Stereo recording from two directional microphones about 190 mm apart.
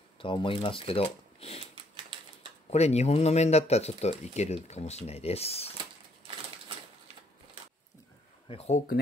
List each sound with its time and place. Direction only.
0.2 s speech: 25° left (ahead or behind)
2.7 s speech: 35° left (ahead or behind)
8.5 s speech: 35° left (ahead or behind)